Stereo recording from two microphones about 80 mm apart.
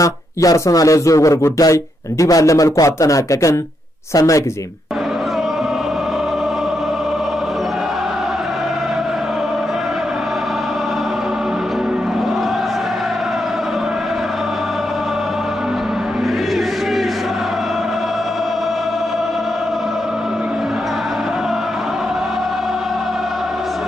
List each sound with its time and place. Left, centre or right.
0.0 s speech: left